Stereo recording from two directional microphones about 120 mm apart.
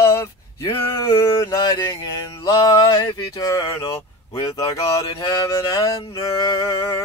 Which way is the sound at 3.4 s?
30° left (ahead or behind).